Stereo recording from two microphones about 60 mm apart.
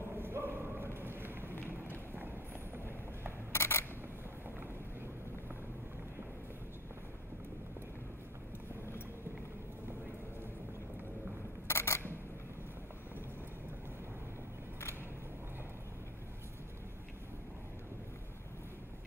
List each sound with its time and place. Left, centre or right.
0.1 s a sound: right
3.5 s camera: left
11.6 s camera: left